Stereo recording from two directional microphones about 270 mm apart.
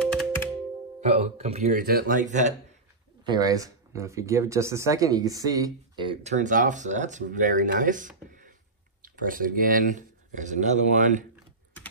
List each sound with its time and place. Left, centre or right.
0.0 s computer keyboard: centre
1.0 s speech: right
3.3 s speech: centre
8.3 s a sound: right
9.0 s speech: right